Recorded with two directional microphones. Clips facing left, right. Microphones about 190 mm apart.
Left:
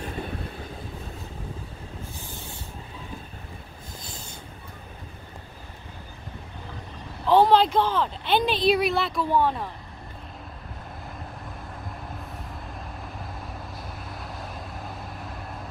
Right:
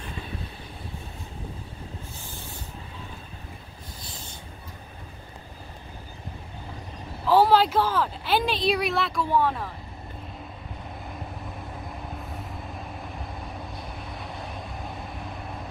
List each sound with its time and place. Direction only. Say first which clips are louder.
7.2 s a woman's voice: left 1 dB; 5° right (ahead or behind)
12.7 s vehicle: right 1 dB; centre (ahead or behind)